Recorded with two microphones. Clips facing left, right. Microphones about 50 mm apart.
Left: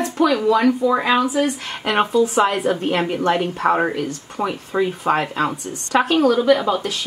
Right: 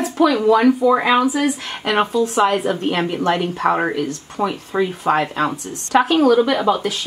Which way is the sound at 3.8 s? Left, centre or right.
Centre.